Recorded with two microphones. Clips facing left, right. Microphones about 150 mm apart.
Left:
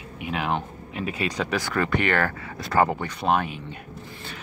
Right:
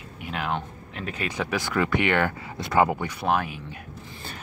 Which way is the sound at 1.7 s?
15° right (ahead or behind).